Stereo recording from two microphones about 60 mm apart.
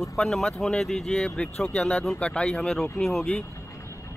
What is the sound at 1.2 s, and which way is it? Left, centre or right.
Speech, centre.